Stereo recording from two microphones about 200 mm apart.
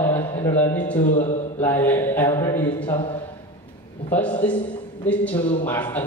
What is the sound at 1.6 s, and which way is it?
A man's voice, 10° left (ahead or behind).